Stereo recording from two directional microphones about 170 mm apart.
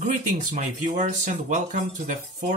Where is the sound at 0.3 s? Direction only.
50° right (ahead or behind).